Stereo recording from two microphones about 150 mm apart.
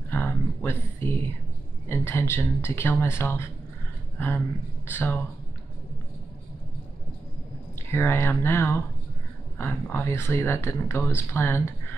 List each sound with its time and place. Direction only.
0.1 s a sound: 10° left (ahead or behind)
1.9 s speech: 15° left (ahead or behind)
7.9 s speech: 15° left (ahead or behind)